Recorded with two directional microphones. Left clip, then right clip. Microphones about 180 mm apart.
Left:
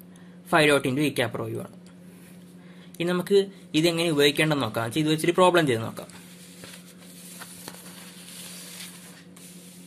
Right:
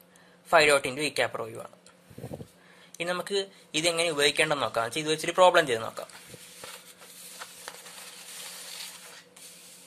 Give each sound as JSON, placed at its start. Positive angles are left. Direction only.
{"t": 0.5, "sound": "speech", "side_deg": -15}
{"t": 3.0, "sound": "speech", "side_deg": -15}